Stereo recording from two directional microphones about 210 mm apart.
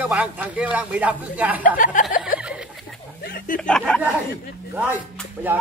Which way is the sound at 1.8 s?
40° left (ahead or behind).